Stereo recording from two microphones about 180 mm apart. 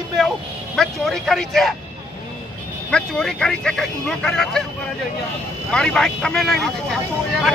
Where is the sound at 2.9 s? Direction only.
5° left (ahead or behind).